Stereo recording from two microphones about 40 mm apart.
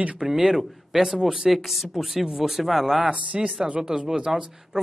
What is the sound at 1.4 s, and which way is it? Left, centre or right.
Speech, centre.